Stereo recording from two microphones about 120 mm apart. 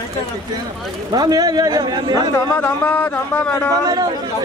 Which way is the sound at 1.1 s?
30° right (ahead or behind).